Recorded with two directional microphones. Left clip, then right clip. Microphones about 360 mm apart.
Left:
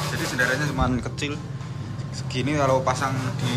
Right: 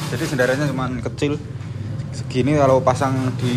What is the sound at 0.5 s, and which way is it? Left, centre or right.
Speech, centre.